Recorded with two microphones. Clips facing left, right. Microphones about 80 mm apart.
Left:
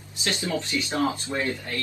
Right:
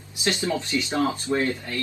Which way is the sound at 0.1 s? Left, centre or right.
Right.